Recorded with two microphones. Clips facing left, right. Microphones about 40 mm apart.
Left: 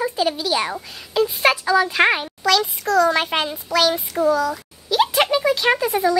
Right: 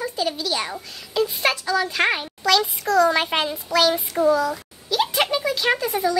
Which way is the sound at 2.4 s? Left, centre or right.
Centre.